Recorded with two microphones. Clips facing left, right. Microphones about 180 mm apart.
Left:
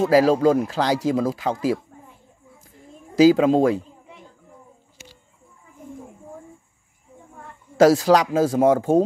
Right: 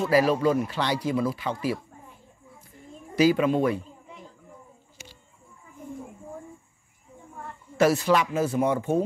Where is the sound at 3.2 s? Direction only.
90° left.